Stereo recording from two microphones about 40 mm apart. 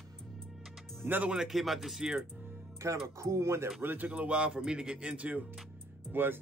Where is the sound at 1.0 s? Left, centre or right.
Right.